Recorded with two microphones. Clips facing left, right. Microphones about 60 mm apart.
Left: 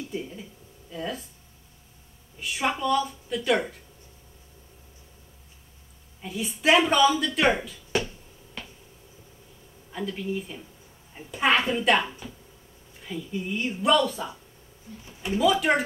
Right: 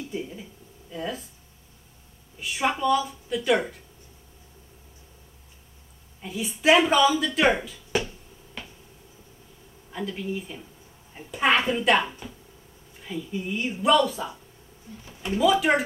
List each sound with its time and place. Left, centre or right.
0.1 s a sound: centre
2.3 s speech: centre
6.2 s speech: centre
8.6 s finger snapping: centre
9.9 s speech: centre